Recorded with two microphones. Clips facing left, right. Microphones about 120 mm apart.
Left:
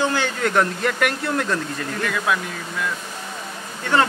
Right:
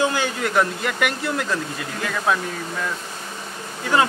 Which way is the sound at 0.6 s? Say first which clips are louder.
Left 1 dB; centre (ahead or behind).